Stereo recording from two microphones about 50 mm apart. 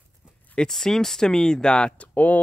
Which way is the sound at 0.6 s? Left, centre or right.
Centre.